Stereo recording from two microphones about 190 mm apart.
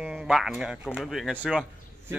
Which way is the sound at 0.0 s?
Centre (ahead or behind).